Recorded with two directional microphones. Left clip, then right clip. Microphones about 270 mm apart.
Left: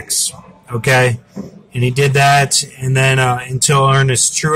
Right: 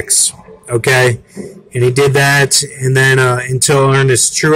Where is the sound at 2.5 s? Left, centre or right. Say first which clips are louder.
Right 4 dB; centre.